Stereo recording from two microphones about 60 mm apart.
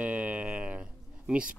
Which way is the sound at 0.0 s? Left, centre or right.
Right.